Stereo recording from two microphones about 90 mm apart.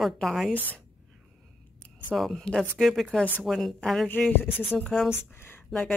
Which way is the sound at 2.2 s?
5° left (ahead or behind).